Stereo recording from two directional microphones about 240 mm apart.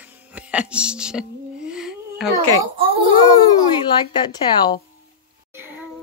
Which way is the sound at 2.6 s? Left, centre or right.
Right.